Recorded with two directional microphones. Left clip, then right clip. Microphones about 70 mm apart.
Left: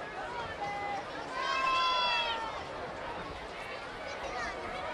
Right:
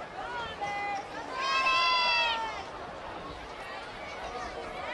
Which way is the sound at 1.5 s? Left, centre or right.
Right.